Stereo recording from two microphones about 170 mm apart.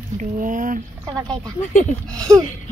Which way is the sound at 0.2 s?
50° right (ahead or behind).